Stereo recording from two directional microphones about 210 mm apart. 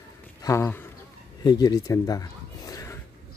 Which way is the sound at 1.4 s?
20° left (ahead or behind).